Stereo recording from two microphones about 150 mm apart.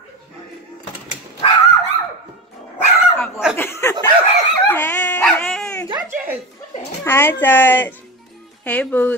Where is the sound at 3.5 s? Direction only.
15° left (ahead or behind).